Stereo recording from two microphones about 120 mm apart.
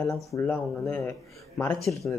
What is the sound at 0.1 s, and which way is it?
Speech, 25° left (ahead or behind).